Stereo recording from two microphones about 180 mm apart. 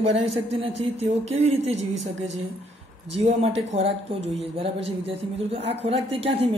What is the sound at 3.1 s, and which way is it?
Speech, 35° right (ahead or behind).